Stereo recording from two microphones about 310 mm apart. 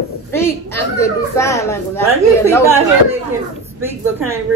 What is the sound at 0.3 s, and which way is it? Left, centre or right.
A woman's voice, centre.